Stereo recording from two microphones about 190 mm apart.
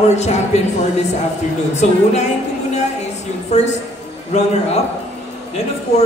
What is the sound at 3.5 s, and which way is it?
Speech, 35° left (ahead or behind).